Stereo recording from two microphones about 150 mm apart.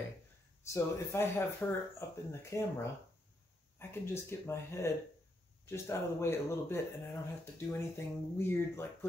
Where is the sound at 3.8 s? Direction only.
15° left (ahead or behind).